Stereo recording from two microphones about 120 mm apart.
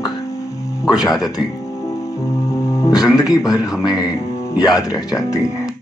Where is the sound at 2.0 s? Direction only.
30° left (ahead or behind).